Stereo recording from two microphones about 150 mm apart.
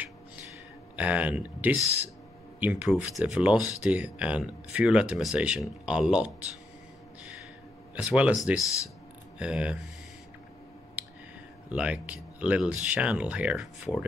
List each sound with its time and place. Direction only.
0.9 s speech: 10° right (ahead or behind)
7.9 s speech: 10° right (ahead or behind)
8.5 s speech: 20° left (ahead or behind)
9.4 s speech: 5° right (ahead or behind)
11.0 s a sound: 10° right (ahead or behind)
11.7 s speech: 10° right (ahead or behind)